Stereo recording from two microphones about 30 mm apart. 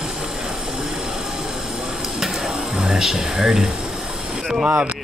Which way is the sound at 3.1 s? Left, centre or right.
Centre.